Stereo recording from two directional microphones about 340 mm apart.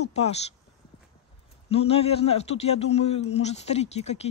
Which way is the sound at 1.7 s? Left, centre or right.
Centre.